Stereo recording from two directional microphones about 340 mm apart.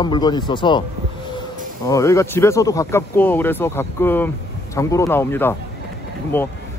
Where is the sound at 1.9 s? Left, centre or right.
Centre.